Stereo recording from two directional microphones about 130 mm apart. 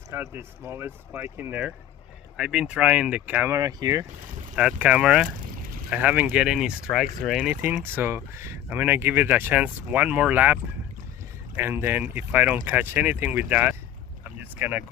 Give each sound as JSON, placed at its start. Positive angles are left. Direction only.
{"t": 0.1, "sound": "speech", "side_deg": -15}
{"t": 4.6, "sound": "speech", "side_deg": -5}
{"t": 7.6, "sound": "speech", "side_deg": -15}
{"t": 14.2, "sound": "boat", "side_deg": -15}